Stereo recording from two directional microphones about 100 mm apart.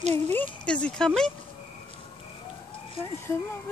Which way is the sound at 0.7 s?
10° left (ahead or behind).